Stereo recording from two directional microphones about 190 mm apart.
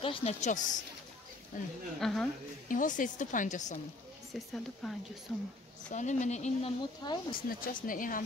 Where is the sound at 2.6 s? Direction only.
45° left (ahead or behind).